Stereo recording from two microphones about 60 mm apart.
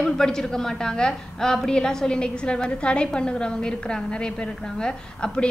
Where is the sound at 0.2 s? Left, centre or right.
Centre.